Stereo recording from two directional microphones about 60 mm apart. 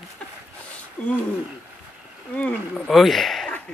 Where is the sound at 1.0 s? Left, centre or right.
Centre.